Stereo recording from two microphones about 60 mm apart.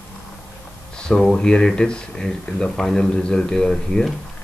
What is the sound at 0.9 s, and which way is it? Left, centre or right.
Speech, centre.